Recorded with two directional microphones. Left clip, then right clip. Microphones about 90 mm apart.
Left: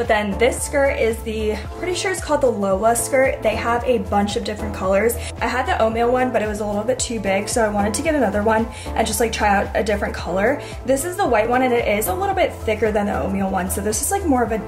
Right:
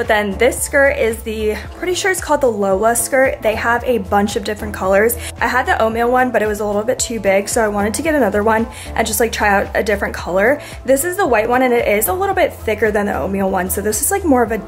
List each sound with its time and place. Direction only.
0.0 s a woman's voice: 30° right (ahead or behind)